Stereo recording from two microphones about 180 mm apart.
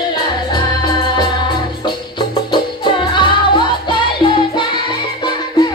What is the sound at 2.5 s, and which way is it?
Music, 25° left (ahead or behind).